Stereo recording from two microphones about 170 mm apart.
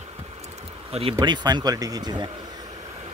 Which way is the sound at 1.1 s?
25° right (ahead or behind).